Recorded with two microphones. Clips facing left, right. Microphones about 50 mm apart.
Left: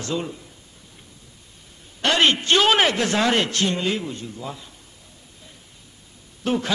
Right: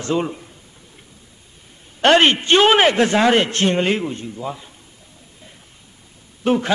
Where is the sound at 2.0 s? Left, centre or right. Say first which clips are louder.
Right 6 dB; right.